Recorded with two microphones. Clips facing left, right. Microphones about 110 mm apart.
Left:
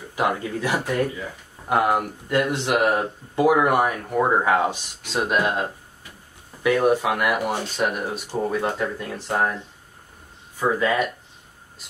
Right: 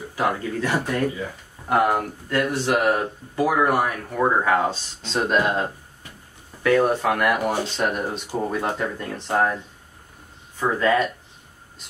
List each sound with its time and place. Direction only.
0.1 s speech: 20° left (ahead or behind)
10.6 s speech: 10° left (ahead or behind)